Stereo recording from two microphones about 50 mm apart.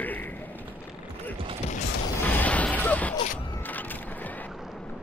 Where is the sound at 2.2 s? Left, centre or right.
Left.